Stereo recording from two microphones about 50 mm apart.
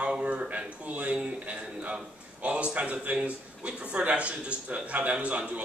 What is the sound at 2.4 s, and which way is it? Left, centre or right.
A man's voice, right.